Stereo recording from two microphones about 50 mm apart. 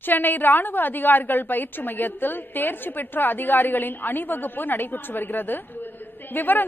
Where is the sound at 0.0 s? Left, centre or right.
Left.